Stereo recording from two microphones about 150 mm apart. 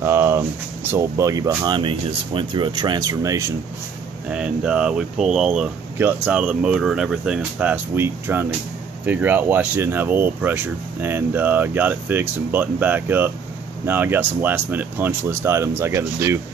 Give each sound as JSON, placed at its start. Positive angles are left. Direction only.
{"t": 0.0, "sound": "a sound", "side_deg": -15}
{"t": 0.9, "sound": "speech", "side_deg": -20}
{"t": 4.3, "sound": "speech", "side_deg": -5}